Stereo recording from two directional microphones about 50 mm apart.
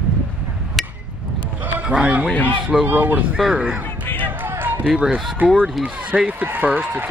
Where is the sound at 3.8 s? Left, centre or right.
Left.